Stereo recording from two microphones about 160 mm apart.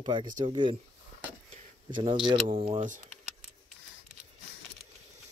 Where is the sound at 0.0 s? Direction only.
30° right (ahead or behind).